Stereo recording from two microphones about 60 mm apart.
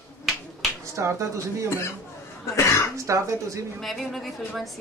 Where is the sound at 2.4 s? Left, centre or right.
Left.